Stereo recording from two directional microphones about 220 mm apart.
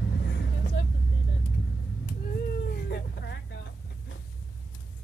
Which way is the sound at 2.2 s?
45° left (ahead or behind).